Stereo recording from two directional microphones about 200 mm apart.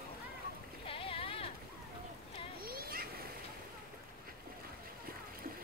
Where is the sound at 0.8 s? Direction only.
25° left (ahead or behind).